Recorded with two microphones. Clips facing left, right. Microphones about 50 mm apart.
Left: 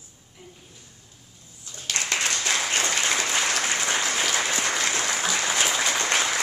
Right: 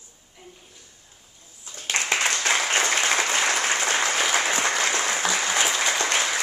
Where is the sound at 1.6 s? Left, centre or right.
Right.